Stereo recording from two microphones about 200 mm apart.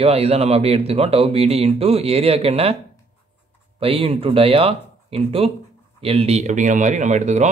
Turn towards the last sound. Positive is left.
turn(degrees=-35)  # may be behind; listen again after turning